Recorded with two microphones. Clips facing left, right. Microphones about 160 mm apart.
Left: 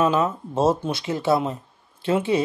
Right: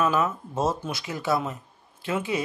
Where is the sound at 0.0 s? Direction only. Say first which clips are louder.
Left 3 dB; 30° left (ahead or behind).